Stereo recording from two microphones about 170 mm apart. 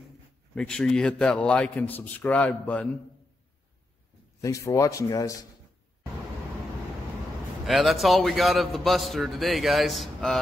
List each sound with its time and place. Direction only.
0.6 s a man's voice: 5° left (ahead or behind)
4.4 s speech: 20° left (ahead or behind)
7.6 s a man's voice: centre (ahead or behind)